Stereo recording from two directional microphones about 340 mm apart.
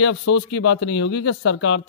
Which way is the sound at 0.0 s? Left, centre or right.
Left.